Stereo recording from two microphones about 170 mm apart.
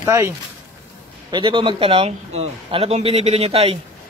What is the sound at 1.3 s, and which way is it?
A man's voice, 30° right (ahead or behind).